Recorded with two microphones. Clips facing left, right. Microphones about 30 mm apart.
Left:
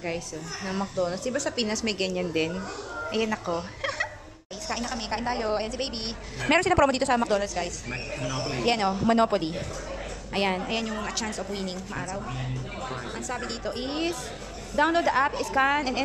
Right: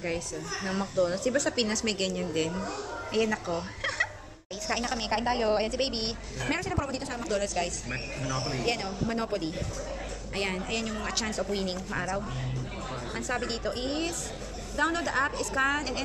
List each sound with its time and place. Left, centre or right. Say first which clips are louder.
0.0 s speech: even; centre
4.6 s a woman's voice: right 1 dB; centre
6.6 s a woman's voice: left 11 dB; left
7.3 s a woman's voice: left 2 dB; centre
8.3 s speech: left 4 dB; left
10.3 s speech: left 5 dB; centre
11.1 s a woman's voice: right 1 dB; centre
14.8 s speech: left 5 dB; left